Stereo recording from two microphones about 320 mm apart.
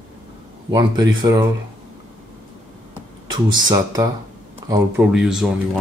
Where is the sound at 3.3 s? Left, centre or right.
Centre.